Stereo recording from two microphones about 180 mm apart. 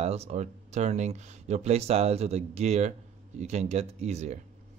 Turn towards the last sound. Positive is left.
turn(degrees=-35)  # may be behind; listen again after turning